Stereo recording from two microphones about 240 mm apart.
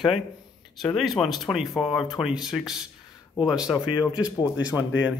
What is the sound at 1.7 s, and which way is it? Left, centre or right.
Speech, left.